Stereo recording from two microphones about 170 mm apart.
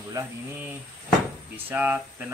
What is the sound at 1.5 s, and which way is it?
Speech, 10° right (ahead or behind).